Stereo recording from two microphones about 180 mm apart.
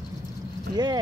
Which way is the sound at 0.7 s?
20° right (ahead or behind).